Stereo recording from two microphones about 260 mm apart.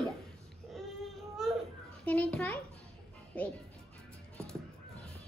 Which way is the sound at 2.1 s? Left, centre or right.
Centre.